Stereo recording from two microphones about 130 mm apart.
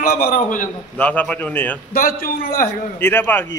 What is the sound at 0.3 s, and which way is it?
Speech, 90° left.